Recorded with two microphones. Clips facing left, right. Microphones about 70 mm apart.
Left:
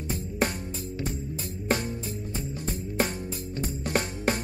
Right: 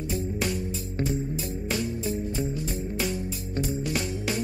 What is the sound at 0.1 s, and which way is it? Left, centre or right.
Music, left.